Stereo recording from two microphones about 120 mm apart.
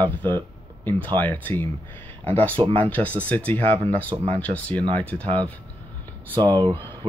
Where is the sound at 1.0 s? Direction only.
15° left (ahead or behind).